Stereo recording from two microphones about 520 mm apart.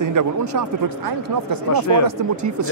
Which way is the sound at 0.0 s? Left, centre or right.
Right.